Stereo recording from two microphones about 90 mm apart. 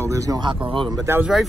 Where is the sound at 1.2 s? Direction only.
5° right (ahead or behind).